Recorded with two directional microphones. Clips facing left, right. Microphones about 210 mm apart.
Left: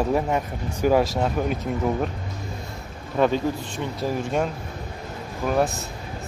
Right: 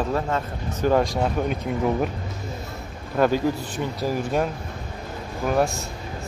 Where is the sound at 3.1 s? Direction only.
Centre (ahead or behind).